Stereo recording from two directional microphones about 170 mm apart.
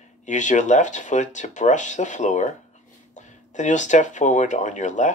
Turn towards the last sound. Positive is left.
turn(degrees=45)  # may be behind; listen again after turning